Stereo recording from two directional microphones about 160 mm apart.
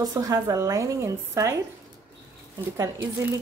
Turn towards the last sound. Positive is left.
turn(degrees=-20)  # may be behind; listen again after turning